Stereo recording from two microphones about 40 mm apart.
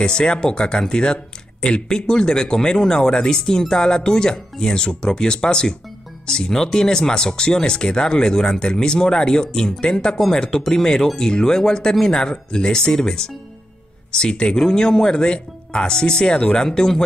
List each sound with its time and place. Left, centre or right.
0.0 s speech: centre